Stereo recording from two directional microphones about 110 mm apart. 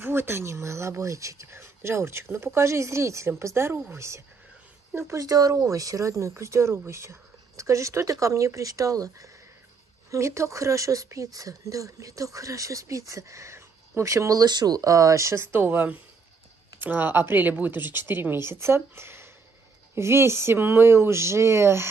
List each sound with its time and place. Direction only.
0.0 s speech: 20° right (ahead or behind)